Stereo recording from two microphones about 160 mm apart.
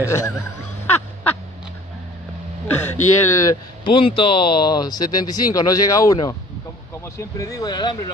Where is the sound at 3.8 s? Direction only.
35° left (ahead or behind).